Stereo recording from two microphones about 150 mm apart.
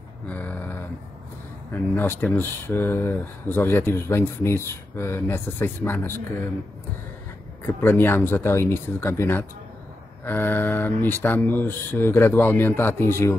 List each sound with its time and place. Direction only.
0.3 s a sound: 10° left (ahead or behind)
1.7 s speech: 15° left (ahead or behind)
7.6 s speech: 15° left (ahead or behind)